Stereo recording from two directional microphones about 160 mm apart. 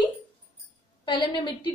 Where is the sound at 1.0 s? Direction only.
30° left (ahead or behind).